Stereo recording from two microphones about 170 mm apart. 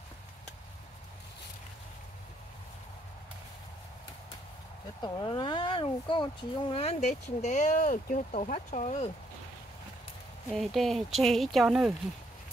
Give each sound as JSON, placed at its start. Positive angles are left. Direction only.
{"t": 5.0, "sound": "speech", "side_deg": 25}
{"t": 10.5, "sound": "speech", "side_deg": 0}